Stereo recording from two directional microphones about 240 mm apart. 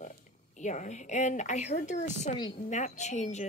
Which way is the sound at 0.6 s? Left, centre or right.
Left.